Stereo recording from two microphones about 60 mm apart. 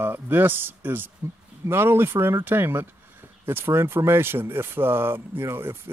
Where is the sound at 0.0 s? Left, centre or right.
Right.